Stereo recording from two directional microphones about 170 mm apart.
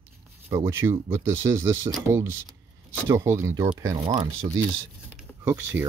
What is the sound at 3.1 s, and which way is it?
Speech, 15° right (ahead or behind).